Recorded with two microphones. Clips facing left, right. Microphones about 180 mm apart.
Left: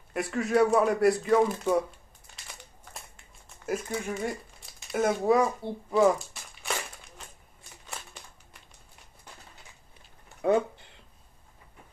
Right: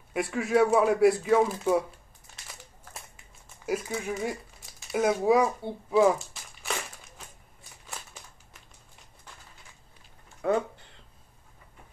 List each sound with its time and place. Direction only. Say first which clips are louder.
0.1 s speech: right 1 dB; centre (ahead or behind)
2.3 s crumpling: even; centre (ahead or behind)
10.4 s speech: left 2 dB; 20° left (ahead or behind)